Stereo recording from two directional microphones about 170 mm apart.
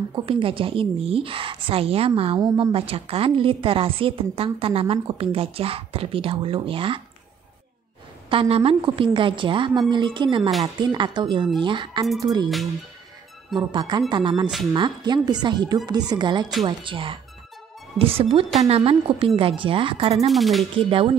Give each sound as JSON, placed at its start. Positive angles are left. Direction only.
{"t": 0.1, "sound": "a woman's voice", "side_deg": -30}
{"t": 8.3, "sound": "a woman's voice", "side_deg": -35}
{"t": 13.6, "sound": "a woman's voice", "side_deg": -25}
{"t": 20.2, "sound": "speech", "side_deg": 0}
{"t": 20.7, "sound": "a woman's voice", "side_deg": -30}